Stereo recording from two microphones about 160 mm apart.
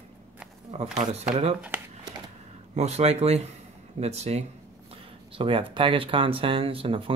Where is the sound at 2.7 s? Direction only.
45° right (ahead or behind).